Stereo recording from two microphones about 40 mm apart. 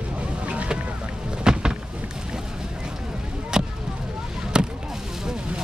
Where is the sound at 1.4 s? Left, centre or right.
Centre.